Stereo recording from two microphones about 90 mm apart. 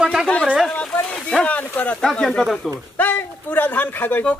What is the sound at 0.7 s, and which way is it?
Speech, 10° left (ahead or behind).